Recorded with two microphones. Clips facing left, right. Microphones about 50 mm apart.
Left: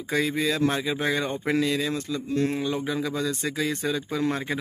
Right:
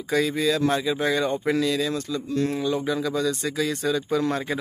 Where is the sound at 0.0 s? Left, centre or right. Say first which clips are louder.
Right 2 dB; centre.